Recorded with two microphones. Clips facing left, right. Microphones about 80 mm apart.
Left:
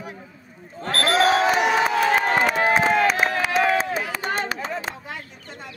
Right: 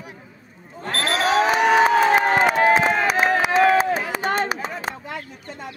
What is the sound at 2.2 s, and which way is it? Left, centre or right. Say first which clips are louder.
Run: right 3 dB; right.